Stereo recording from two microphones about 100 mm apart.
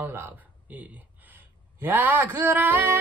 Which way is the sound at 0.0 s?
20° right (ahead or behind).